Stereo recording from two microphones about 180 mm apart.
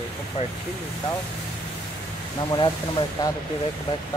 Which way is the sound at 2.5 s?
25° left (ahead or behind).